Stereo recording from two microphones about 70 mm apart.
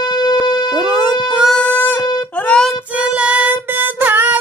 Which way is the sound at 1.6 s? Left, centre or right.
Left.